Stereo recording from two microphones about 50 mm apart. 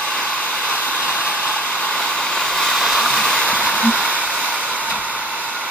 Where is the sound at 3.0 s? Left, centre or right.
Centre.